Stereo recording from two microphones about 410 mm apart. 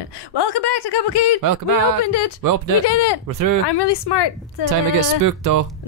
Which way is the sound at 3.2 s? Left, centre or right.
Right.